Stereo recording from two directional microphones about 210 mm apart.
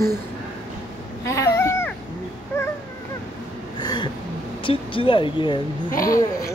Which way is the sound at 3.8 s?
20° left (ahead or behind).